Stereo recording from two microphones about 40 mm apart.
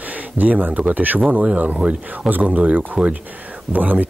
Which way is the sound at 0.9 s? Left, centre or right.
Right.